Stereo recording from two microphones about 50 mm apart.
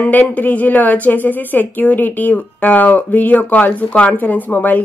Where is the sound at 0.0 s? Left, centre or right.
Left.